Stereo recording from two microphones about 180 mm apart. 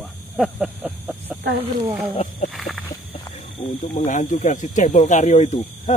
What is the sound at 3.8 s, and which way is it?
Speech, 45° left (ahead or behind).